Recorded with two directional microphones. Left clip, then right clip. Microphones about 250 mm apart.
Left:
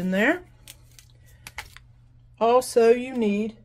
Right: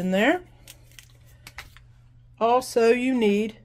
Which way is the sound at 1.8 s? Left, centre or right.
Centre.